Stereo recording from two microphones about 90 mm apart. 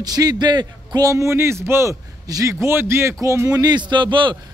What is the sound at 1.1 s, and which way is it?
Speech, 30° right (ahead or behind).